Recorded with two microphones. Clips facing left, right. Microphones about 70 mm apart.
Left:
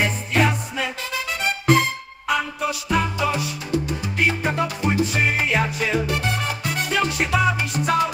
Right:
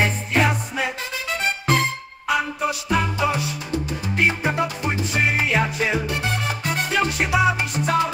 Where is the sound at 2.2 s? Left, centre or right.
Centre.